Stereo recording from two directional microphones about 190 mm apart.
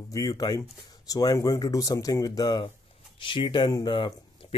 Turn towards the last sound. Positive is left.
turn(degrees=25)  # may be behind; listen again after turning